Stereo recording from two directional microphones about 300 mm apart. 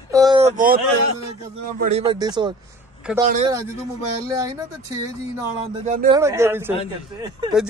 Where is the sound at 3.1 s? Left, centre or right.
Centre.